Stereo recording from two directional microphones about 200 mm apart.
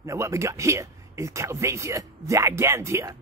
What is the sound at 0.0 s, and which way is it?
Speech, 15° right (ahead or behind).